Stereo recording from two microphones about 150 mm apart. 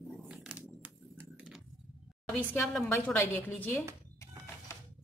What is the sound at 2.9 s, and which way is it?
Speech, 15° left (ahead or behind).